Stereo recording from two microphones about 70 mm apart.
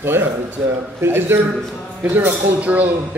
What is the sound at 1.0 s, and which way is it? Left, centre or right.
A man's voice, right.